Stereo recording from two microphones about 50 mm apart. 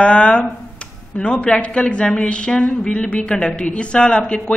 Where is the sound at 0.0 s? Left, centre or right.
Left.